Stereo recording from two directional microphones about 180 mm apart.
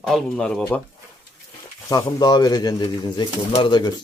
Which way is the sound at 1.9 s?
25° left (ahead or behind).